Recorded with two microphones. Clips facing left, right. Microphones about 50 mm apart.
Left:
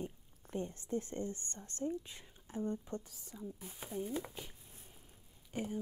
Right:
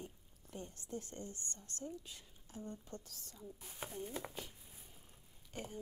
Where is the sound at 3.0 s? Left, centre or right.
Centre.